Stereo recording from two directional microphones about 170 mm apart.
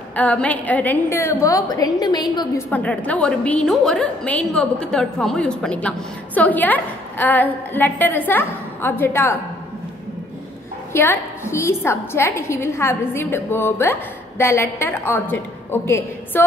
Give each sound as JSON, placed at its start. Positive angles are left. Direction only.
{"t": 0.1, "sound": "a woman's voice", "side_deg": 10}
{"t": 2.7, "sound": "a woman's voice", "side_deg": 10}
{"t": 10.9, "sound": "a woman's voice", "side_deg": 15}